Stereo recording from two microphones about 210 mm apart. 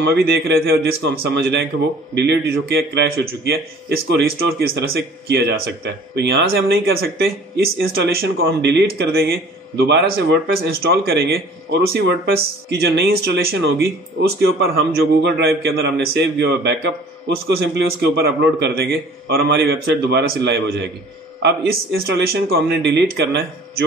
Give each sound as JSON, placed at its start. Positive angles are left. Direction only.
{"t": 0.0, "sound": "speech", "side_deg": -55}